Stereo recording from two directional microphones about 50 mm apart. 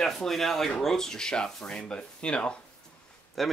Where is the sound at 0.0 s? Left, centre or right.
Centre.